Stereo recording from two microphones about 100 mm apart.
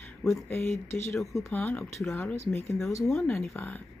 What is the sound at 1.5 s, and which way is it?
Speech, 15° left (ahead or behind).